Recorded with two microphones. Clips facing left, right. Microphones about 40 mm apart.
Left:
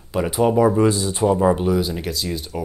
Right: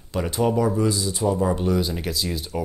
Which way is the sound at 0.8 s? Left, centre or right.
Left.